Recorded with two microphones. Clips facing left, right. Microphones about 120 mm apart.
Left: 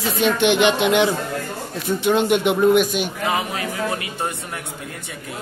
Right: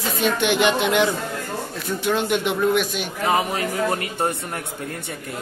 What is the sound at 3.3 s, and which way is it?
Speech, 35° right (ahead or behind).